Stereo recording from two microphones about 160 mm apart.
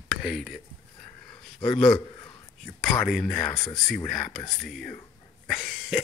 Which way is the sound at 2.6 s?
5° left (ahead or behind).